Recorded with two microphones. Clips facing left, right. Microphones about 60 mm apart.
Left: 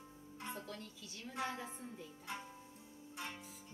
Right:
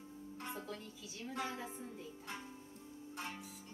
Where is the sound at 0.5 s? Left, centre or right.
Centre.